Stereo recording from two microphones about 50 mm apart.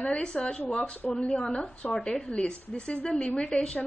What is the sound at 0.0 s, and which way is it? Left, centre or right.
A woman's voice, centre.